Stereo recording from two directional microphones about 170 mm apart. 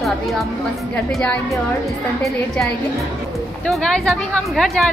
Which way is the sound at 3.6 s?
5° left (ahead or behind).